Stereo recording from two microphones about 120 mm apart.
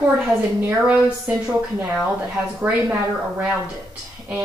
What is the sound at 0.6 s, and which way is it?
A woman's voice, 20° right (ahead or behind).